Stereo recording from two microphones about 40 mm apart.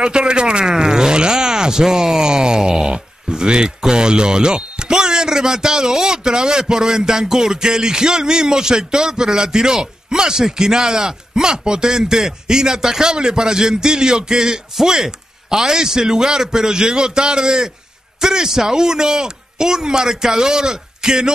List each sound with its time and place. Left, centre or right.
0.0 s speech: centre